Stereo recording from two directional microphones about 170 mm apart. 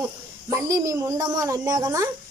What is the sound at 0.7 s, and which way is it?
A child's voice, 20° right (ahead or behind).